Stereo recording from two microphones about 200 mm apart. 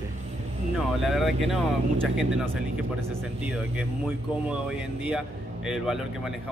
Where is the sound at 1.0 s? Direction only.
Centre (ahead or behind).